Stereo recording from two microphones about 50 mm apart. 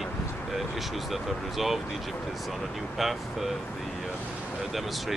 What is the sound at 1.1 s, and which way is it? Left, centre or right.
Speech, centre.